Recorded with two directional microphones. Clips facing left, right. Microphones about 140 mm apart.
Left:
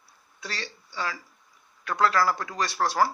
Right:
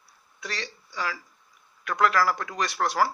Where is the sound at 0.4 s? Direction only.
30° left (ahead or behind).